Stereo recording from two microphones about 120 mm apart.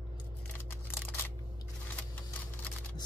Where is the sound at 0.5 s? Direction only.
20° left (ahead or behind).